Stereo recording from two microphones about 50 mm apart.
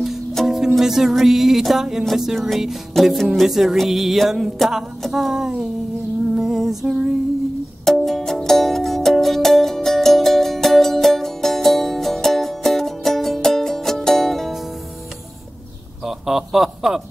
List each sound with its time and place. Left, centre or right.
0.4 s music: centre
0.7 s music: centre
8.0 s music: centre
16.0 s a sound: centre